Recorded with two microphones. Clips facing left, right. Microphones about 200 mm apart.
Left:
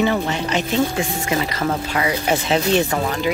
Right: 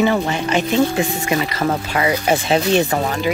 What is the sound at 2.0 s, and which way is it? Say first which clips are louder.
Speech: right 3 dB; 30° right (ahead or behind).